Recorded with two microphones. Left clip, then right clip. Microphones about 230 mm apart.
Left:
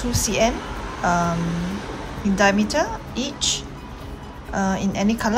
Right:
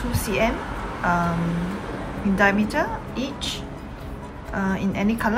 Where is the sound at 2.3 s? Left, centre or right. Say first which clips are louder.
Left 2 dB; centre.